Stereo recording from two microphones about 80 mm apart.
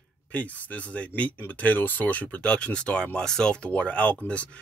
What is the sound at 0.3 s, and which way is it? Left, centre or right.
Speech, centre.